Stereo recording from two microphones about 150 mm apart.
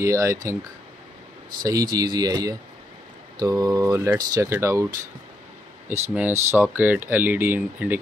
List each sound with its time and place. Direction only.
0.0 s speech: 20° right (ahead or behind)
1.6 s speech: 25° right (ahead or behind)
5.9 s speech: 10° right (ahead or behind)